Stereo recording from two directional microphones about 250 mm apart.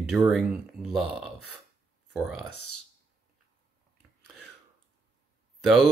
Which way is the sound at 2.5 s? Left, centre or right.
Left.